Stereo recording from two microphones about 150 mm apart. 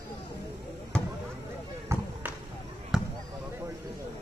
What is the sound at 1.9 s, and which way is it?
Basketball bounce, 20° right (ahead or behind).